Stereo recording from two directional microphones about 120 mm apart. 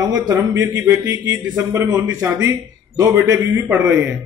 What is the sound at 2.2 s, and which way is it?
Speech, 25° right (ahead or behind).